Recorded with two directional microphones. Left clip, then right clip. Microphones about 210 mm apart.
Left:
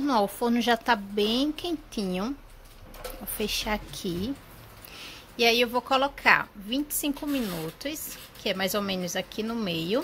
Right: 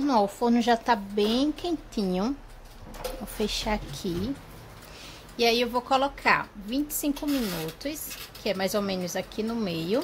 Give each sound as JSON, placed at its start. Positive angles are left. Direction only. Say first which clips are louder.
{"t": 0.0, "sound": "a woman's voice", "louder": "right 1 dB", "side_deg": 0}
{"t": 3.3, "sound": "a woman's voice", "louder": "even", "side_deg": -5}
{"t": 5.4, "sound": "a woman's voice", "louder": "left 1 dB", "side_deg": 0}